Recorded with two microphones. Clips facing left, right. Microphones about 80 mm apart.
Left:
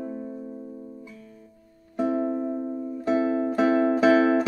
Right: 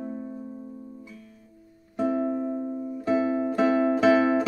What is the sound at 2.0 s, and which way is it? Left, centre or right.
Music, centre.